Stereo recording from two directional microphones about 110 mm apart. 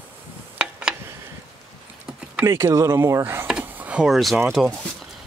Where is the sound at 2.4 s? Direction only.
20° right (ahead or behind).